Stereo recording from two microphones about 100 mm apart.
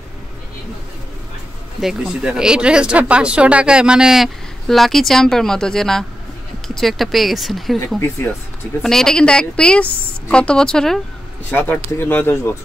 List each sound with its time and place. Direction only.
1.8 s speech: 5° right (ahead or behind)
8.8 s a woman's voice: 5° left (ahead or behind)
11.5 s speech: 20° left (ahead or behind)